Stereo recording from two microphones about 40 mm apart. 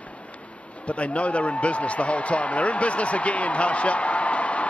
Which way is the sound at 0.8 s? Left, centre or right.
Left.